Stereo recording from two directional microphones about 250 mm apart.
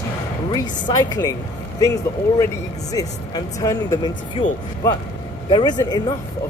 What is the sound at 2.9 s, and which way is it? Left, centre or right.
Speech, centre.